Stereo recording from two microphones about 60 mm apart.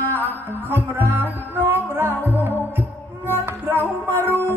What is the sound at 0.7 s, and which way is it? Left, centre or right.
Music, right.